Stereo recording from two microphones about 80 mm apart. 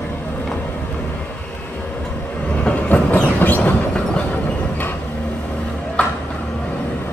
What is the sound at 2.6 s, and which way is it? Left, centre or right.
Train, centre.